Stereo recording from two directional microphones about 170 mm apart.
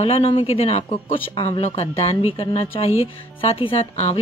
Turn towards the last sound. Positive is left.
turn(degrees=35)  # may be behind; listen again after turning